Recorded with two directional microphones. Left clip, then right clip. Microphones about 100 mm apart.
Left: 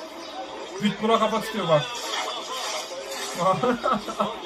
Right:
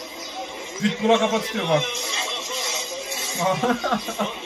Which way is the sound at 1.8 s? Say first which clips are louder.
Right 4 dB; 35° right (ahead or behind).